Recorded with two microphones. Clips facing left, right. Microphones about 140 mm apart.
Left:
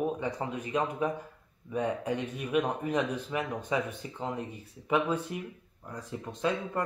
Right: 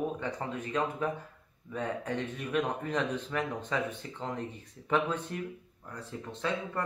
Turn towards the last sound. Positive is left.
turn(degrees=20)  # may be behind; listen again after turning